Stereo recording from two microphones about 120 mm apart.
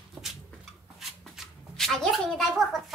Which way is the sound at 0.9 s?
Centre (ahead or behind).